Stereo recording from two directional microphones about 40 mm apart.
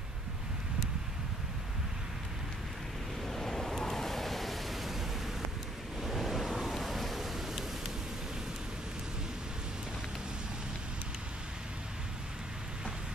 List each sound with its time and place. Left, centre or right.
3.3 s waves: centre